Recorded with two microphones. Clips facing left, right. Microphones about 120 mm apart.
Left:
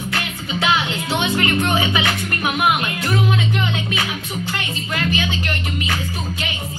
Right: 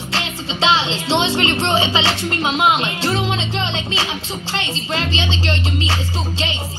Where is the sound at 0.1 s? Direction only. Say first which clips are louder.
Right 4 dB; 25° right (ahead or behind).